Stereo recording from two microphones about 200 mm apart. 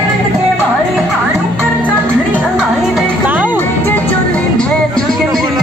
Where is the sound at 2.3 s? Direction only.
5° right (ahead or behind).